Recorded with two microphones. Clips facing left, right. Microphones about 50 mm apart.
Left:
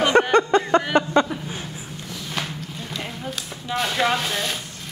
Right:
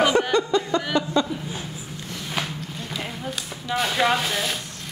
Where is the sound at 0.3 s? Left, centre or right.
Left.